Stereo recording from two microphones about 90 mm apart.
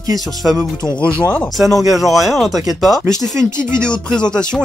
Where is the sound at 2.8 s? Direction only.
Centre (ahead or behind).